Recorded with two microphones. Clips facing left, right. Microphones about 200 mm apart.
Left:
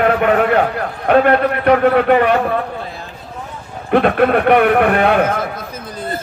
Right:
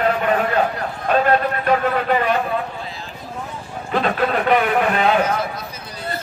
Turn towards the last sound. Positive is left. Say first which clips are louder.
# left 4 dB
turn(degrees=55)  # may be behind; listen again after turning